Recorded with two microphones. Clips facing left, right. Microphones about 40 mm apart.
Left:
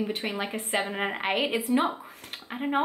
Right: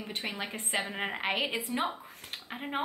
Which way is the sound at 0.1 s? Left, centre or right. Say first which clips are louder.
Left 6 dB; centre.